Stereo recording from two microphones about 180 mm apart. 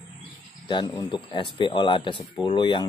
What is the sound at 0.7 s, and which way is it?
Speech, 25° left (ahead or behind).